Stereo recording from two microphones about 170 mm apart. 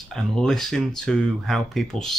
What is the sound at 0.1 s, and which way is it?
Speech, 5° left (ahead or behind).